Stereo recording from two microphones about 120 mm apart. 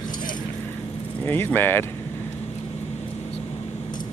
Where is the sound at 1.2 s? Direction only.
15° left (ahead or behind).